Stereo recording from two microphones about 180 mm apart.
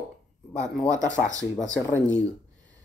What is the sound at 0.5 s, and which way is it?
Speech, 10° left (ahead or behind).